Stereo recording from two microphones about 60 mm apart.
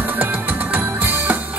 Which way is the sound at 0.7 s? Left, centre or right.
Right.